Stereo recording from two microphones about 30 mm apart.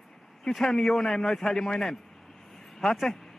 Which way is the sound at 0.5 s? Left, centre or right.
Centre.